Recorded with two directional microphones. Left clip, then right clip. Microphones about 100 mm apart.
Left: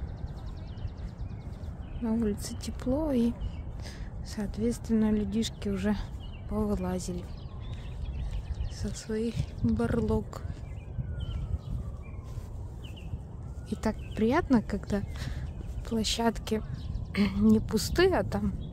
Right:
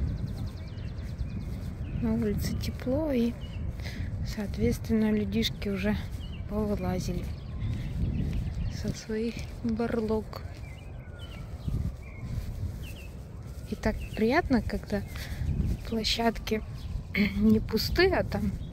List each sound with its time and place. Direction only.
2.0 s speech: 20° left (ahead or behind)
4.4 s speech: 25° left (ahead or behind)
9.0 s speech: 30° left (ahead or behind)
13.7 s a sound: 35° left (ahead or behind)
14.1 s speech: 25° left (ahead or behind)
14.7 s speech: 40° left (ahead or behind)
17.1 s speech: 55° left (ahead or behind)
17.6 s speech: 40° left (ahead or behind)